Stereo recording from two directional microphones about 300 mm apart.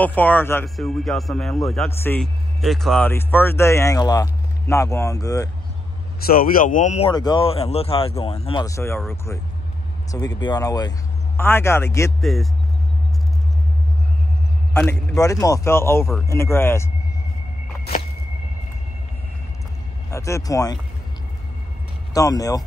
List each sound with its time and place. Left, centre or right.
0.0 s speech: centre
6.2 s speech: left; by 12.4 s centre
14.7 s speech: centre
20.1 s speech: centre
22.1 s speech: centre